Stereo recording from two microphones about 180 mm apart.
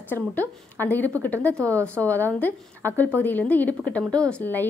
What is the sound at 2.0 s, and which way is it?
A woman's voice, 10° left (ahead or behind).